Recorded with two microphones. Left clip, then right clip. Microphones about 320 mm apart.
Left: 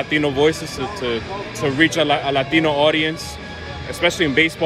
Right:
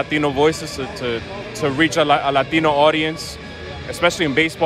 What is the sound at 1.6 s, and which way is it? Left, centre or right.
Speech, right.